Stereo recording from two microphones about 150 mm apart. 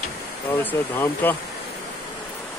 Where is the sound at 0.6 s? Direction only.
10° left (ahead or behind).